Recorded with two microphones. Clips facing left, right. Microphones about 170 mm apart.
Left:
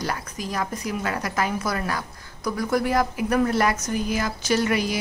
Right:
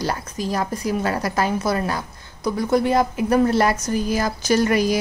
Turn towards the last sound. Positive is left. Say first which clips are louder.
# right 4 dB
turn(degrees=-40)  # may be behind; listen again after turning